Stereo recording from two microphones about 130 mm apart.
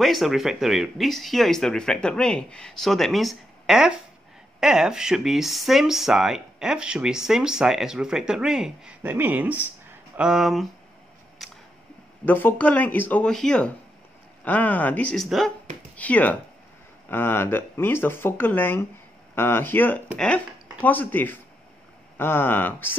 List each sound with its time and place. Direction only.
0.0 s speech: centre (ahead or behind)
11.4 s a sound: centre (ahead or behind)
12.3 s speech: 15° left (ahead or behind)
15.2 s speech: centre (ahead or behind)
16.0 s speech: 10° left (ahead or behind)